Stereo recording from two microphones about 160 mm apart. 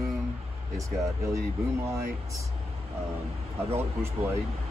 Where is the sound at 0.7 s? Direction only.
20° right (ahead or behind).